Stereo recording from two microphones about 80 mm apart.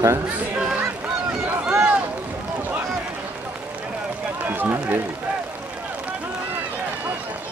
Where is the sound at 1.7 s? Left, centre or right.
Centre.